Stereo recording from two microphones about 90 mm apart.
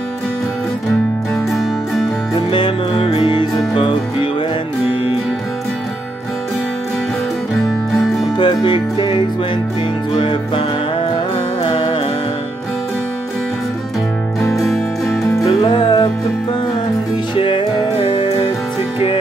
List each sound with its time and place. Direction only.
1.3 s music: centre (ahead or behind)
2.3 s music: 60° left (ahead or behind)
7.9 s music: centre (ahead or behind)
8.4 s music: 60° left (ahead or behind)
11.6 s music: 80° left
14.6 s music: centre (ahead or behind)
15.4 s music: 55° left (ahead or behind)
17.4 s music: 70° left (ahead or behind)